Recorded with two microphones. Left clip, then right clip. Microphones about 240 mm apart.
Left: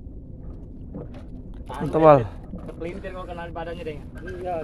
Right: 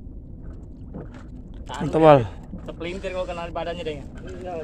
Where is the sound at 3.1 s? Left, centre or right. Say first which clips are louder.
Right 5 dB; right.